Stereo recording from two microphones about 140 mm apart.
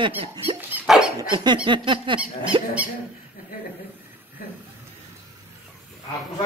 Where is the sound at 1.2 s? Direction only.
30° right (ahead or behind).